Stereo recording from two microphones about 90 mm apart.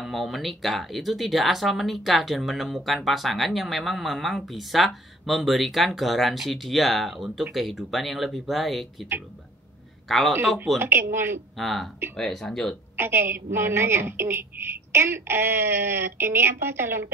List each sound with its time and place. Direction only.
0.0 s speech: centre (ahead or behind)
10.0 s speech: centre (ahead or behind)
10.8 s a woman's voice: 25° right (ahead or behind)
11.5 s speech: centre (ahead or behind)
12.9 s a woman's voice: 25° right (ahead or behind)